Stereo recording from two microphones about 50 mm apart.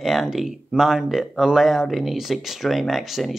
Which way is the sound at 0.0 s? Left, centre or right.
Centre.